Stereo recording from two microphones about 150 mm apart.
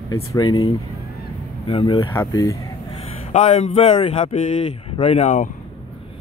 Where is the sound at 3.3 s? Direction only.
50° left (ahead or behind).